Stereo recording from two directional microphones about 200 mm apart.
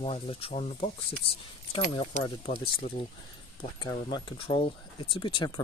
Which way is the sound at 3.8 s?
20° left (ahead or behind).